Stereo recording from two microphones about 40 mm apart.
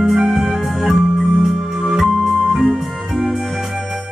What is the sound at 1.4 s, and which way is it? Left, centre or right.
Music, centre.